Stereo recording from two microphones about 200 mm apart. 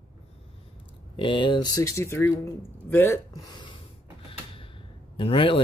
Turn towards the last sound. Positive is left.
turn(degrees=25)  # may be behind; listen again after turning